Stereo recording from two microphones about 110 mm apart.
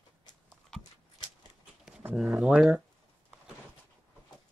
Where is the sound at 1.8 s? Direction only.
5° right (ahead or behind).